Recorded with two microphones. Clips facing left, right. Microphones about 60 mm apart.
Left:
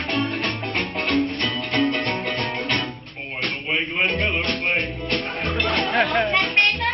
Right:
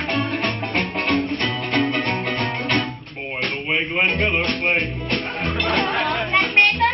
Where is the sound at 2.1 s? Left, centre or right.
Centre.